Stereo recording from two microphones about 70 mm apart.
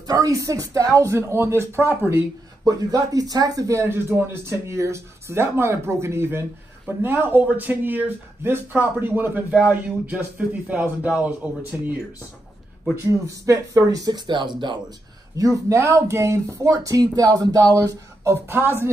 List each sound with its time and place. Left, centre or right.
0.0 s speech: right
2.6 s speech: right
10.1 s a man's voice: centre
13.0 s speech: right
13.7 s speech: right
15.3 s speech: right
18.2 s speech: right